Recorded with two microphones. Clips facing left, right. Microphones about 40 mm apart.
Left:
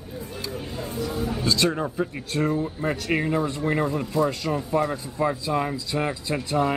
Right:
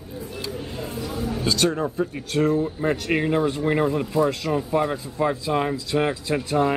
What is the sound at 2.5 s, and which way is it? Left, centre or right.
Speech, centre.